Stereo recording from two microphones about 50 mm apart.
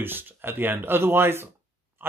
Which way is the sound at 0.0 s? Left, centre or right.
Right.